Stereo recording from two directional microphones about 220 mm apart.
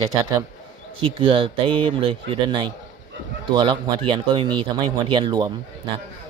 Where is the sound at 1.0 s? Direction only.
25° right (ahead or behind).